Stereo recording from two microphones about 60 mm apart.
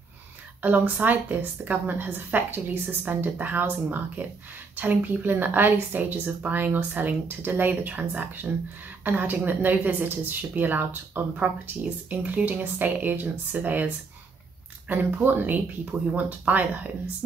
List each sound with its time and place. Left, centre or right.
0.6 s a woman's voice: right
14.9 s a woman's voice: right